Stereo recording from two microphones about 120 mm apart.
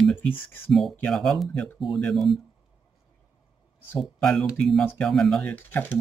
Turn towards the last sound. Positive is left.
turn(degrees=15)  # may be behind; listen again after turning